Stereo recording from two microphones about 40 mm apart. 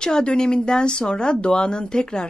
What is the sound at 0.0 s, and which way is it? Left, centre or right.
A woman's voice, left.